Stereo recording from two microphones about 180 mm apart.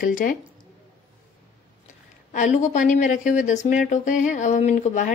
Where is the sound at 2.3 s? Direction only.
40° left (ahead or behind).